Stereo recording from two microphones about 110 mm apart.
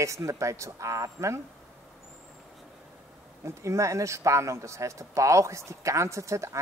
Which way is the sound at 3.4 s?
25° right (ahead or behind).